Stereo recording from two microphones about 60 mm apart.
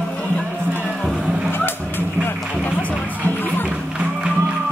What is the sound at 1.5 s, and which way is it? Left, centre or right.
Music, left.